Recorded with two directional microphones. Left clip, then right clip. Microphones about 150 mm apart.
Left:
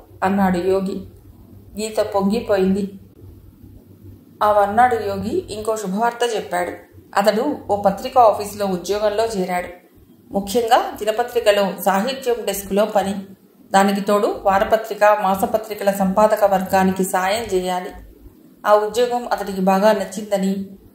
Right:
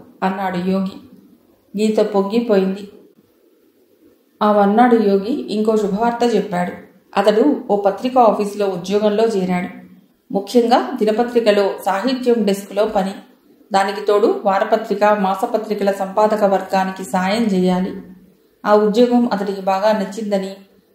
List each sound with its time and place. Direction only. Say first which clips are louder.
0.2 s a woman's voice: left 2 dB; 40° left (ahead or behind)
4.4 s a woman's voice: right 1 dB; 40° left (ahead or behind)